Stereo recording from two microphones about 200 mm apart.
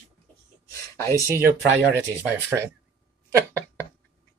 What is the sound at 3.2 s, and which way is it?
Speech, 15° right (ahead or behind).